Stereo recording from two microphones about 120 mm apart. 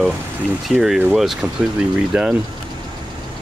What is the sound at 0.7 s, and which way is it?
Speech, centre (ahead or behind).